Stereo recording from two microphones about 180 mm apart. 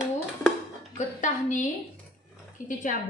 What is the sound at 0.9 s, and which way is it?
A woman's voice, 45° left (ahead or behind).